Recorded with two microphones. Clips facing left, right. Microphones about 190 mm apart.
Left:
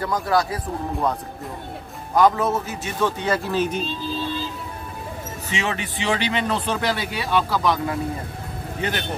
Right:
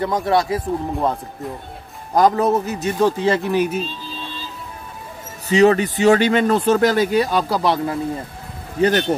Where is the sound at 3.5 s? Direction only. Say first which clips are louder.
Right 4 dB; 10° right (ahead or behind).